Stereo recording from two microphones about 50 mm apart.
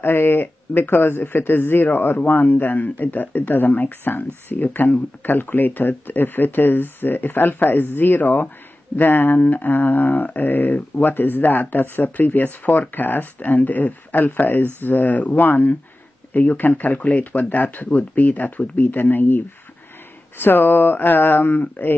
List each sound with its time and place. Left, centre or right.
0.0 s speech: left